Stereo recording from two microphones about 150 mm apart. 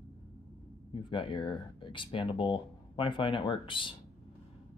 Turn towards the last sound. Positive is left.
turn(degrees=35)  # may be behind; listen again after turning